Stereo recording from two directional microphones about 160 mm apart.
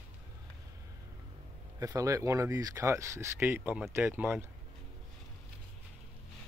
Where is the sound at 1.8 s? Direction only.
20° right (ahead or behind).